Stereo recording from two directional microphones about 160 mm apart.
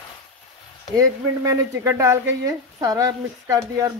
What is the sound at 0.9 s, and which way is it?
Speech, 20° right (ahead or behind).